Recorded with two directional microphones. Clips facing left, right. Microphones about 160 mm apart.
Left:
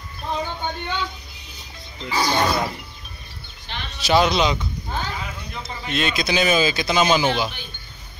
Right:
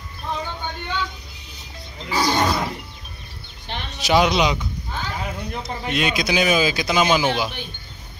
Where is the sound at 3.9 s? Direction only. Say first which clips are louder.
Even; 15° right (ahead or behind).